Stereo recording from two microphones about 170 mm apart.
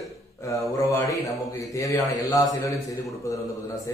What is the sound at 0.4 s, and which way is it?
A man's voice, 20° left (ahead or behind).